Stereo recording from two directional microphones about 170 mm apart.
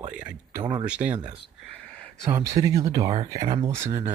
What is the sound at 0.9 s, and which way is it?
Speech, 10° right (ahead or behind).